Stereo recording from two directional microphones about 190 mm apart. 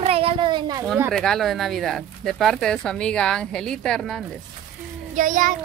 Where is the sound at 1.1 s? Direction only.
Centre (ahead or behind).